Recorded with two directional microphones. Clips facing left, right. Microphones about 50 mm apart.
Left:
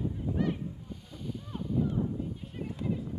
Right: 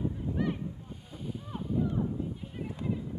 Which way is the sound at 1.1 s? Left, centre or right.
Centre.